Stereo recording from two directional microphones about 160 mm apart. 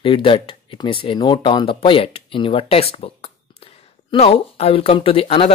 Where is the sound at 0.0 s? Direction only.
35° left (ahead or behind).